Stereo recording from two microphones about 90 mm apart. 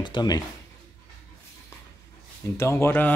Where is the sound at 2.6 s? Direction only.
30° left (ahead or behind).